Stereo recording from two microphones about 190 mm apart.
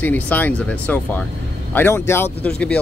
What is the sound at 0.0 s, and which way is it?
Speech, 10° left (ahead or behind).